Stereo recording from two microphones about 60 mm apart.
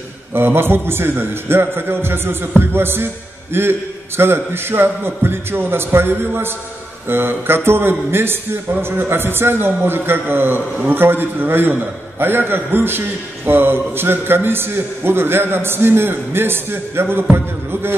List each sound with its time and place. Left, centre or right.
0.3 s a man's voice: right